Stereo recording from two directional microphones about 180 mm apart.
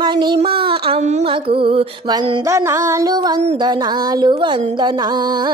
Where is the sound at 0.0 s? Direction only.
25° right (ahead or behind).